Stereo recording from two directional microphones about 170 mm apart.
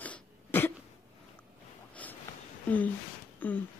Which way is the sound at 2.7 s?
10° left (ahead or behind).